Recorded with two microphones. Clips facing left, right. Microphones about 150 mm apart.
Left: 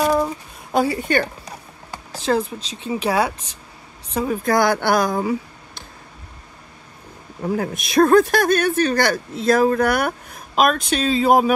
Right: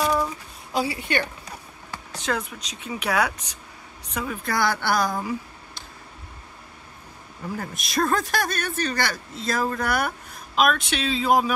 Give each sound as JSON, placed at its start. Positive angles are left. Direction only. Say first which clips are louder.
{"t": 0.0, "sound": "a sound", "louder": "left 5 dB", "side_deg": 35}
{"t": 0.7, "sound": "speech", "louder": "left 6 dB", "side_deg": 45}
{"t": 1.9, "sound": "speech", "louder": "left 7 dB", "side_deg": 30}
{"t": 4.4, "sound": "speech", "louder": "left 6 dB", "side_deg": 45}
{"t": 7.4, "sound": "speech", "louder": "left 9 dB", "side_deg": 55}